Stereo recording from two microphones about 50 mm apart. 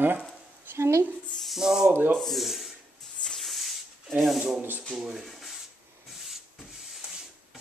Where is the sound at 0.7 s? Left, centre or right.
Right.